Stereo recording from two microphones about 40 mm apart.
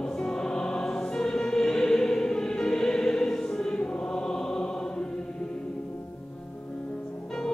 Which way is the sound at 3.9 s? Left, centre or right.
Centre.